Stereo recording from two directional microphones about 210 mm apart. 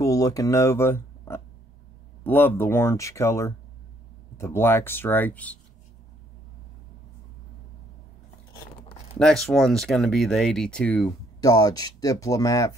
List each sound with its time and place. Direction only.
0.0 s speech: 15° left (ahead or behind)
9.2 s speech: centre (ahead or behind)
11.4 s speech: 15° left (ahead or behind)